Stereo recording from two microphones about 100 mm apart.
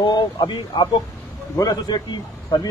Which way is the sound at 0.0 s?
50° left (ahead or behind).